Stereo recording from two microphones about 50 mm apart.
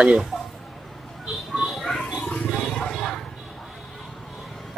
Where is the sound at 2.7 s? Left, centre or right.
Centre.